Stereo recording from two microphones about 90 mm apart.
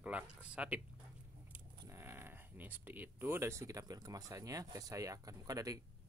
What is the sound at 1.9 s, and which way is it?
Speech, 25° right (ahead or behind).